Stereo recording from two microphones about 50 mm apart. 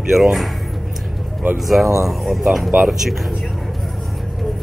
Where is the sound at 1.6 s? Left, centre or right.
Centre.